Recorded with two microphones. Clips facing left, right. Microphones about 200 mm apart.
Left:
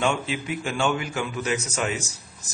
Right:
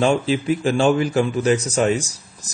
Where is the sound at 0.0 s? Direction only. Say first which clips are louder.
Right 7 dB; 35° right (ahead or behind).